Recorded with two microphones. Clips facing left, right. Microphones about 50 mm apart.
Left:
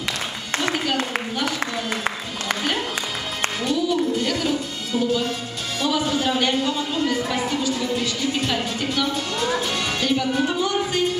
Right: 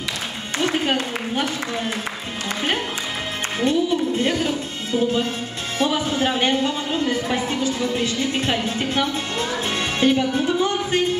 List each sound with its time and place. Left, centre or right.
3.6 s music: right
5.8 s a woman's voice: right